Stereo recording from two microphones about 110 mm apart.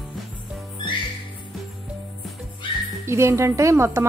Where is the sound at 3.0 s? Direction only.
25° right (ahead or behind).